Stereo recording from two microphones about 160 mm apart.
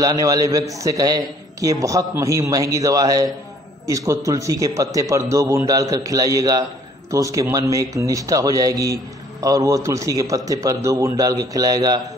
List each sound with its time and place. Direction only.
0.0 s speech: 20° right (ahead or behind)